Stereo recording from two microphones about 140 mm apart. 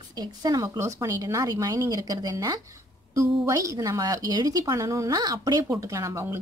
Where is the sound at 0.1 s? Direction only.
30° right (ahead or behind).